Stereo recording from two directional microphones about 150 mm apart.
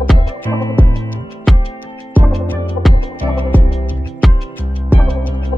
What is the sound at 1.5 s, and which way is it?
Music, centre (ahead or behind).